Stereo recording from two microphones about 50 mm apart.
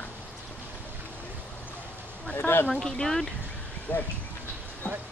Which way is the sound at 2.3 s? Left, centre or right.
Left.